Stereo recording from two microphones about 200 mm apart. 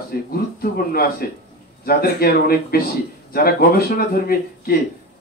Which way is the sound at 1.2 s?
50° left (ahead or behind).